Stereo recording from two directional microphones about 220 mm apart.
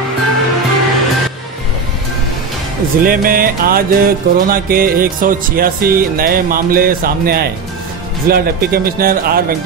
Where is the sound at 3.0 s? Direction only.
40° right (ahead or behind).